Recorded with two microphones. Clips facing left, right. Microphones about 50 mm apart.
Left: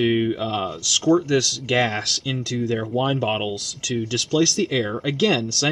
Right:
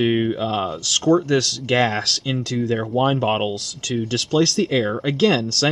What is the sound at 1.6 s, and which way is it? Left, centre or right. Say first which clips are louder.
Speech: right 4 dB; centre.